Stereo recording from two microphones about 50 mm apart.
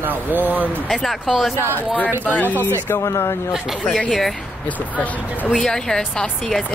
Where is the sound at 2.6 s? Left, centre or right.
Left.